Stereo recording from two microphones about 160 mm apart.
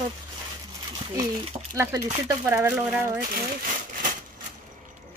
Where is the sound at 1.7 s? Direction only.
20° right (ahead or behind).